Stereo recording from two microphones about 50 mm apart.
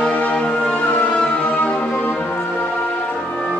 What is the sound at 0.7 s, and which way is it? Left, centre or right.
Music, left.